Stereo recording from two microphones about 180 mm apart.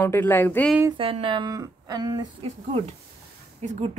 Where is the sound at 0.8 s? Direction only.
30° right (ahead or behind).